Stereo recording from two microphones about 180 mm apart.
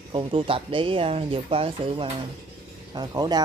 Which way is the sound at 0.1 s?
30° right (ahead or behind).